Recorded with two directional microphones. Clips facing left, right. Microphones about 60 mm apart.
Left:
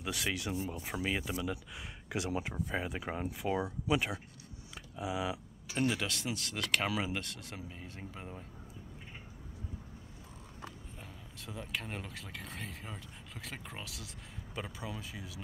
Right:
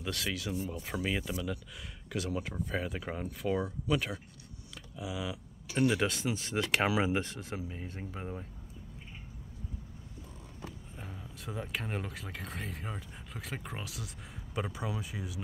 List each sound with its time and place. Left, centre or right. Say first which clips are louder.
0.0 s speech: even; centre
0.5 s speech: right 1 dB; centre
0.8 s speech: right 2 dB; centre; by 5.4 s left
5.8 s speech: right 4 dB; centre
11.0 s speech: right 4 dB; centre